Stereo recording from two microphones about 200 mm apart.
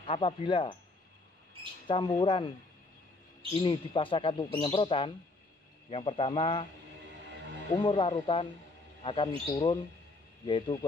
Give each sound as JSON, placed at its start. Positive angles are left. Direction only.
{"t": 0.0, "sound": "speech", "side_deg": 25}
{"t": 1.9, "sound": "speech", "side_deg": 25}
{"t": 3.5, "sound": "speech", "side_deg": 25}
{"t": 7.7, "sound": "speech", "side_deg": 25}